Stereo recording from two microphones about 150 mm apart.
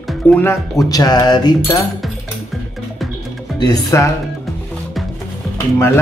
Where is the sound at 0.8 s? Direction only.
25° left (ahead or behind).